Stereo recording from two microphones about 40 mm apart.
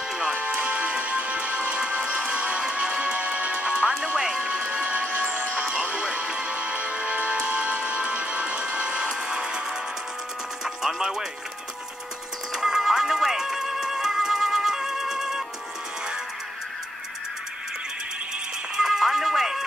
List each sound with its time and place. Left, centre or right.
0.3 s music: right
11.0 s music: centre
12.5 s music: centre
18.9 s music: centre